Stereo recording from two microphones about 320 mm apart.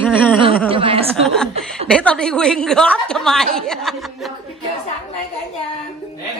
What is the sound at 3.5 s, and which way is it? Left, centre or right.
Chuckle, centre.